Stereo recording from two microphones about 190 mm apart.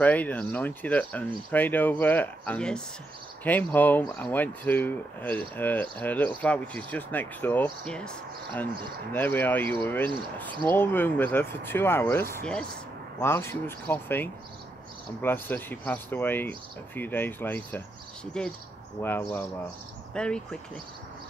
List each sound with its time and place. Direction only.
0.0 s speech: 10° left (ahead or behind)
10.5 s speech: 25° right (ahead or behind)
10.8 s speech: 10° left (ahead or behind)